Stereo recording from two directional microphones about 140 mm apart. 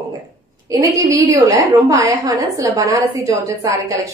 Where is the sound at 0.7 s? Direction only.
20° right (ahead or behind).